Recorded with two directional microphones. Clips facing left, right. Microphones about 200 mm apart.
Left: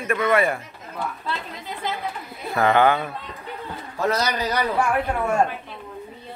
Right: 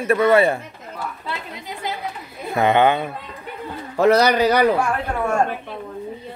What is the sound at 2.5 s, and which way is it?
Speech, 20° right (ahead or behind).